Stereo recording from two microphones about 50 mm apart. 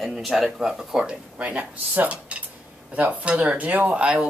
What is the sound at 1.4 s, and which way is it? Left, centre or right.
Speech, right.